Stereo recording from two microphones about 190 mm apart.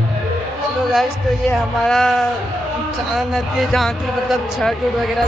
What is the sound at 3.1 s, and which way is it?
Speech, centre (ahead or behind).